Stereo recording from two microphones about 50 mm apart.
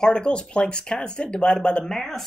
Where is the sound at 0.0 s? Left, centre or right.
Centre.